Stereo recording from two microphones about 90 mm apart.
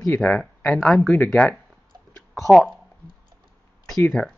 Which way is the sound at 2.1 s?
5° left (ahead or behind).